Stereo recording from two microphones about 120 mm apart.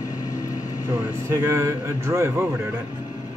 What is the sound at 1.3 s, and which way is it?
A man's voice, 25° right (ahead or behind).